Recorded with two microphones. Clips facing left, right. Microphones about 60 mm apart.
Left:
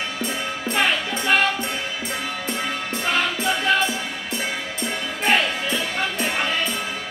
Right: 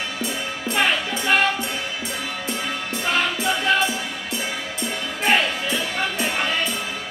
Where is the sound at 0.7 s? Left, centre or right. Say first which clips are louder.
Right 1 dB; centre.